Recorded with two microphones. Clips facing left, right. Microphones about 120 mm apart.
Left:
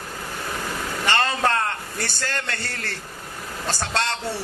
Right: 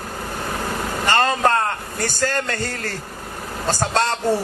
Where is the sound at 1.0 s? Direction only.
40° right (ahead or behind).